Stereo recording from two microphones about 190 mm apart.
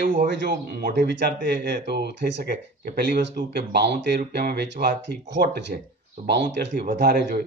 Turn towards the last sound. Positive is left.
turn(degrees=-50)  # may be behind; listen again after turning